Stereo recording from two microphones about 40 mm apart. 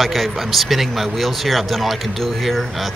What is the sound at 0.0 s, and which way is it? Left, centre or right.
Speech, centre.